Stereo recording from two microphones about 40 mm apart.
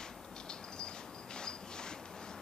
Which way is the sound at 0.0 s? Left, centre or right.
Centre.